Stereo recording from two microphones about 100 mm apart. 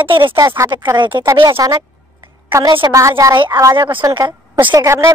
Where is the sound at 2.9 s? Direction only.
30° right (ahead or behind).